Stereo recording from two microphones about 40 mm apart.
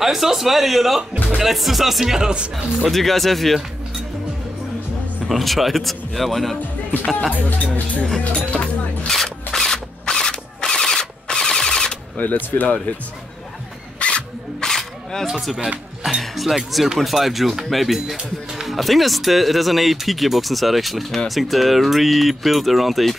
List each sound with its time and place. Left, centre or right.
0.0 s speech: centre
2.9 s speech: centre
5.3 s speech: centre
7.4 s speech: left
9.0 s drill: centre
12.2 s speech: left
13.9 s music: left
14.6 s single-lens reflex camera: centre
15.4 s speech: centre